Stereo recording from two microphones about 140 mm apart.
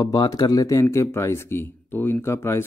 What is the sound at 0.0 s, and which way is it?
Speech, 25° left (ahead or behind).